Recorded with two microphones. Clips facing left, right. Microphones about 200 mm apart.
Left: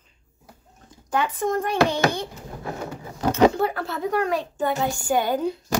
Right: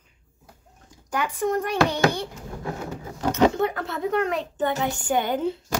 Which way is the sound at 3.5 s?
20° right (ahead or behind).